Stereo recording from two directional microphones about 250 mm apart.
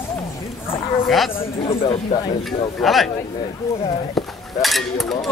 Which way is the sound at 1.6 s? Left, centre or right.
Left.